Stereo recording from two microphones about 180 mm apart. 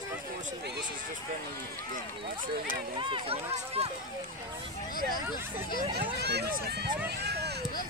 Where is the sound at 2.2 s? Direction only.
50° right (ahead or behind).